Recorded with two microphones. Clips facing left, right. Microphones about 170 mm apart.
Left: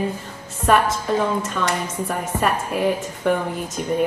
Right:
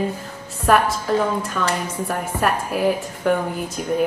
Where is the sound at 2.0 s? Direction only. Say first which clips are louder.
Even; centre (ahead or behind).